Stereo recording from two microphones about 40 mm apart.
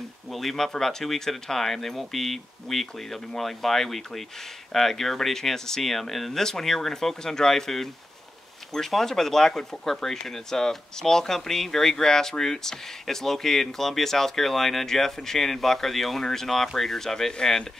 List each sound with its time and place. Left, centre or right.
0.3 s speech: centre